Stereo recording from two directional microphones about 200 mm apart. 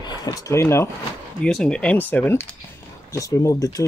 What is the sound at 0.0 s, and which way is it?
Speech, 20° left (ahead or behind).